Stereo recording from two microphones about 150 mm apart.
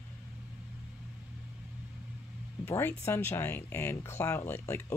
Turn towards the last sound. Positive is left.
turn(degrees=15)  # may be behind; listen again after turning